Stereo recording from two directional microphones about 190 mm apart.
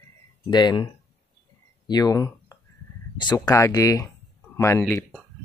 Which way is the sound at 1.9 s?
20° left (ahead or behind).